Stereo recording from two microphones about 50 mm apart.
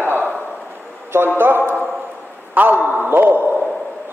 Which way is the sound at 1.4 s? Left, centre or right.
Right.